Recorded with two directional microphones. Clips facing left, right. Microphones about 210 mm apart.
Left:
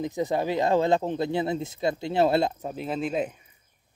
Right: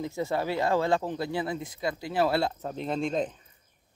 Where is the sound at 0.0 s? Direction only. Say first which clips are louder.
Left 3 dB; 20° left (ahead or behind).